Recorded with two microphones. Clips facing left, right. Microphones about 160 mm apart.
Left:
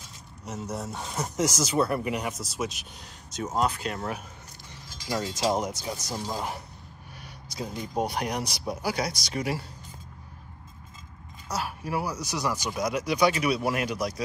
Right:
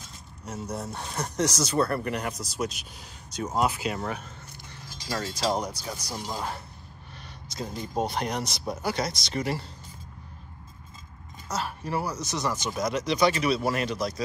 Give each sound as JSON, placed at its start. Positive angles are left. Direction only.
{"t": 0.7, "sound": "speech", "side_deg": 0}
{"t": 5.0, "sound": "speech", "side_deg": 20}
{"t": 7.5, "sound": "speech", "side_deg": 10}
{"t": 11.4, "sound": "a sound", "side_deg": 10}
{"t": 12.3, "sound": "speech", "side_deg": 10}